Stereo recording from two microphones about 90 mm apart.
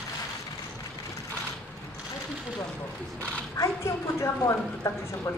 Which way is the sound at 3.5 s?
35° left (ahead or behind).